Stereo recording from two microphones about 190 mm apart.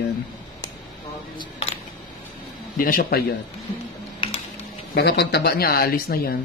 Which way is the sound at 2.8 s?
50° left (ahead or behind).